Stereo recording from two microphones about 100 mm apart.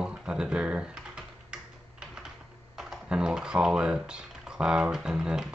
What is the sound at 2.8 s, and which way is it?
Speech, 5° right (ahead or behind).